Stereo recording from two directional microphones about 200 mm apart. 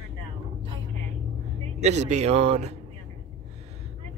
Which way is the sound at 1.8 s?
35° right (ahead or behind).